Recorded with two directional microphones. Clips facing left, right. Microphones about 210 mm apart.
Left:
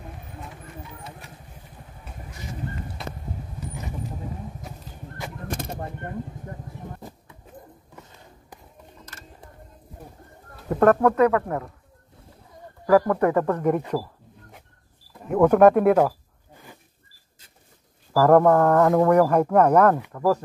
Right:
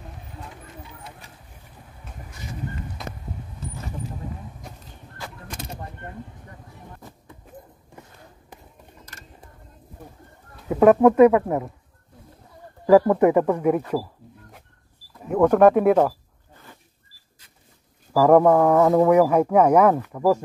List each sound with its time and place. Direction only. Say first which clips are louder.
4.6 s a sound: left 2 dB; 5° left (ahead or behind)
5.5 s a sound: left 6 dB; 50° left (ahead or behind)
10.5 s speech: right 3 dB; 5° right (ahead or behind)
12.8 s speech: right 4 dB; 15° right (ahead or behind)
15.2 s speech: even; 5° left (ahead or behind)
18.1 s speech: right 1 dB; 10° right (ahead or behind)